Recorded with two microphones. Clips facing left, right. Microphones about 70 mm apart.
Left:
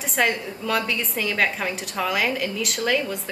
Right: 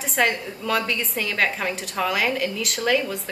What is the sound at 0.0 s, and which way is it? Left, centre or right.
A woman's voice, centre.